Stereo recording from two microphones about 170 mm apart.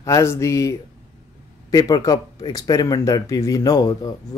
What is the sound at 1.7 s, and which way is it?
Speech, 20° left (ahead or behind).